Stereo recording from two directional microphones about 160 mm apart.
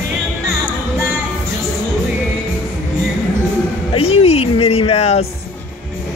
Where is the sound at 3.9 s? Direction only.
40° left (ahead or behind).